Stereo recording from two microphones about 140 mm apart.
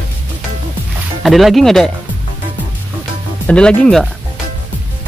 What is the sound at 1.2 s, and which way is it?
Speech, centre (ahead or behind).